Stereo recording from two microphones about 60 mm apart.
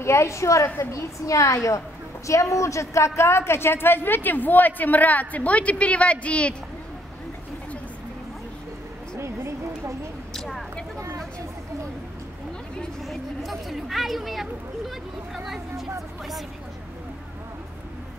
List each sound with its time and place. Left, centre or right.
0.0 s a woman's voice: left
9.1 s a sound: right
13.1 s speech: centre